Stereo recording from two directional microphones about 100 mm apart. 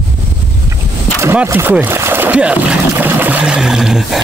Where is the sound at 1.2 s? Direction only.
20° right (ahead or behind).